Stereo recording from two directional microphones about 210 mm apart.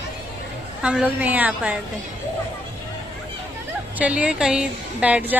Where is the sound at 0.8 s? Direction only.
5° right (ahead or behind).